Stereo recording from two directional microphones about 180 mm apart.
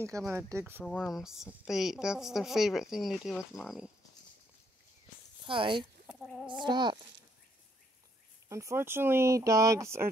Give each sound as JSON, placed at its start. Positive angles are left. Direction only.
{"t": 0.3, "sound": "speech", "side_deg": -15}
{"t": 0.8, "sound": "a woman's voice", "side_deg": 0}
{"t": 5.4, "sound": "speech", "side_deg": -25}
{"t": 8.5, "sound": "speech", "side_deg": -15}